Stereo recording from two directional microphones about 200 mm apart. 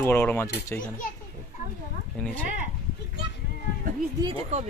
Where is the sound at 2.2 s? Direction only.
5° left (ahead or behind).